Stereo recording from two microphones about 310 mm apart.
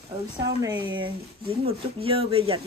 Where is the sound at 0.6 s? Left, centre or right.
Centre.